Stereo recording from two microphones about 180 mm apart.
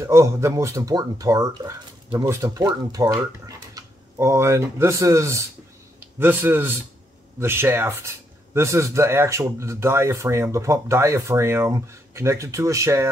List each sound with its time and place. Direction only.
0.0 s speech: 15° right (ahead or behind)